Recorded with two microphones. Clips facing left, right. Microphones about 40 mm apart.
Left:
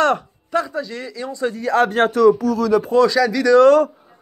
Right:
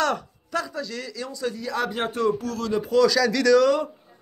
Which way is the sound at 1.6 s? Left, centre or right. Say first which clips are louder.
Left 13 dB; left.